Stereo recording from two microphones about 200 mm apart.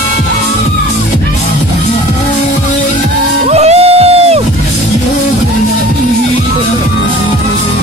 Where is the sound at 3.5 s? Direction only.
30° right (ahead or behind).